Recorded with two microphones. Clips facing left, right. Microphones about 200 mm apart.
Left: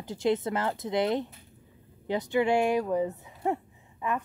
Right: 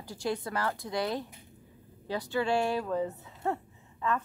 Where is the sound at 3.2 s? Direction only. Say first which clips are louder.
Left 3 dB; 15° left (ahead or behind).